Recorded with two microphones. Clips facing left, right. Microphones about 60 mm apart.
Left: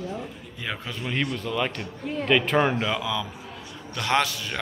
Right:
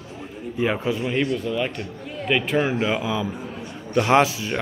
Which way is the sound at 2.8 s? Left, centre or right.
Right.